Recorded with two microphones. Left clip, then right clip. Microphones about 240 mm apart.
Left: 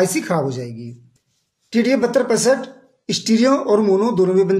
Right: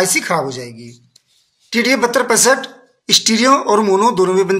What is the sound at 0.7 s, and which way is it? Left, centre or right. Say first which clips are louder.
Speech: even; right.